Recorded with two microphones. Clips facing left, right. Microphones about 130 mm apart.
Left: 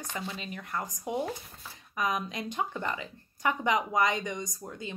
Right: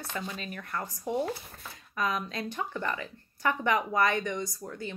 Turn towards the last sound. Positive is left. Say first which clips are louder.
# right 2 dB
turn(degrees=20)  # may be behind; listen again after turning